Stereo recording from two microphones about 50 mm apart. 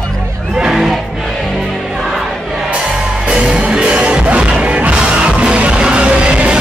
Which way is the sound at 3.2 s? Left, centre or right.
Centre.